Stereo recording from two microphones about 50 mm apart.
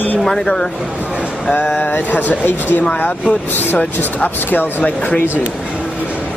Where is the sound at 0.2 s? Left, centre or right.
Centre.